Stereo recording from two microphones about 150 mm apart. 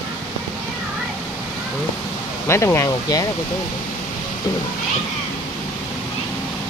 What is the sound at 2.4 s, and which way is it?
Speech, 20° left (ahead or behind).